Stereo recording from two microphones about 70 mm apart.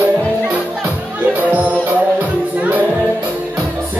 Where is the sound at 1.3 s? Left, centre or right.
Right.